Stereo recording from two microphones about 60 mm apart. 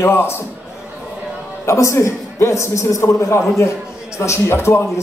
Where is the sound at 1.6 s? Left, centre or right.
Left.